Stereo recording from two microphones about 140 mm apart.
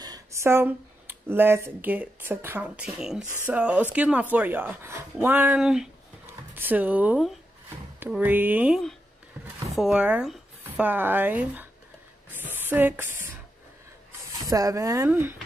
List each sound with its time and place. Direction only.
0.0 s speech: 25° right (ahead or behind); by 5.9 s 5° right (ahead or behind)
6.2 s a sound: 15° right (ahead or behind)
8.2 s speech: 15° right (ahead or behind)
14.4 s speech: 25° right (ahead or behind)